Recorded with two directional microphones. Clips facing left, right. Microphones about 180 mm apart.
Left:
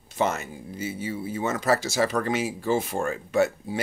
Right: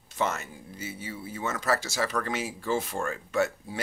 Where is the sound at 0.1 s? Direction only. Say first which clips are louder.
Left 4 dB; 15° left (ahead or behind).